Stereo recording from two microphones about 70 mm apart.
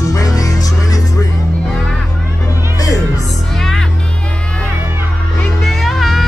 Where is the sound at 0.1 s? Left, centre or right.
Left.